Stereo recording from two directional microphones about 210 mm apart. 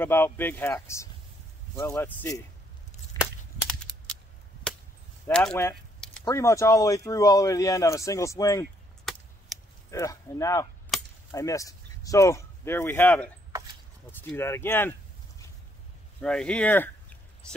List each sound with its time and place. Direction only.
0.0 s speech: 10° left (ahead or behind)
3.2 s cap gun: centre (ahead or behind)
5.2 s a sound: 5° left (ahead or behind)
6.2 s speech: 15° left (ahead or behind)
9.1 s chop: centre (ahead or behind)
9.5 s a sound: centre (ahead or behind)
9.8 s speech: 15° left (ahead or behind)
10.9 s chop: centre (ahead or behind)
11.3 s speech: 15° left (ahead or behind)